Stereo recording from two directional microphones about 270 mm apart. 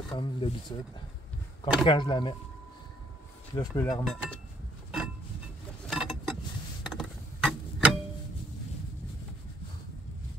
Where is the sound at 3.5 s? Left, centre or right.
Centre.